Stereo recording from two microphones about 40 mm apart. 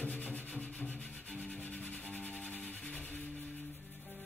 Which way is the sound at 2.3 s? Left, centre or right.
Left.